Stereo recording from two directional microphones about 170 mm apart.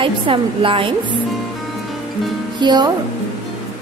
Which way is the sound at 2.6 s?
25° right (ahead or behind).